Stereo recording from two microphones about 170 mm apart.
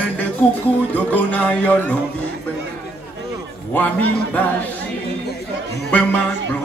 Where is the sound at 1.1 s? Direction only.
10° left (ahead or behind).